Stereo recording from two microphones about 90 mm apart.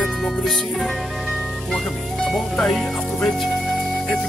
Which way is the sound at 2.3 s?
Centre (ahead or behind).